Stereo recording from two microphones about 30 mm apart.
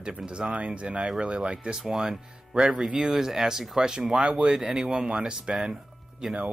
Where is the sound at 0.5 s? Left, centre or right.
Right.